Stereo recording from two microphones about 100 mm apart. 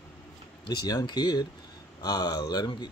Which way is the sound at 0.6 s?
45° left (ahead or behind).